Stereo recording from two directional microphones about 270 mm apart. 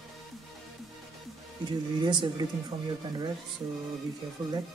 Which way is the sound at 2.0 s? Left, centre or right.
Centre.